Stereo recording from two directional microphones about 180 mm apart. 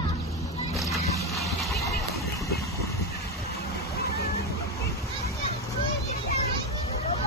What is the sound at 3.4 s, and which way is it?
Vehicle, 60° left (ahead or behind).